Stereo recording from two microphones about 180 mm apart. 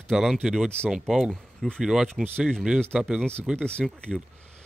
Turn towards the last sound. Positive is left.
turn(degrees=5)  # may be behind; listen again after turning